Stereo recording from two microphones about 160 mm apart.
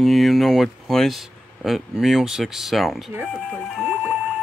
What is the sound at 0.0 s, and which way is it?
Speech, centre (ahead or behind).